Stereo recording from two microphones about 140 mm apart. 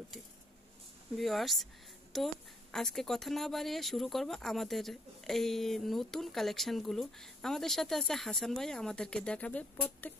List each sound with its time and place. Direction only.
1.1 s speech: centre (ahead or behind)